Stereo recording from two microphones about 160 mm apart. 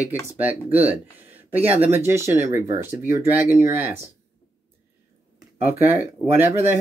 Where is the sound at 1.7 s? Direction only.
10° right (ahead or behind).